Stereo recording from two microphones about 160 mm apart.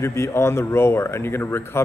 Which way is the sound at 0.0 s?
15° left (ahead or behind).